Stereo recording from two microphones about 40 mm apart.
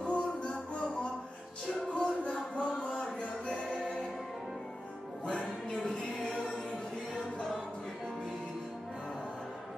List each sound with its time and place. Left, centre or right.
0.0 s music: left
1.8 s music: centre
5.2 s music: left
5.8 s music: centre